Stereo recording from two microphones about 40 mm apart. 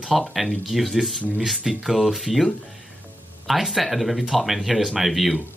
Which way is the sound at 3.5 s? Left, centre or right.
Centre.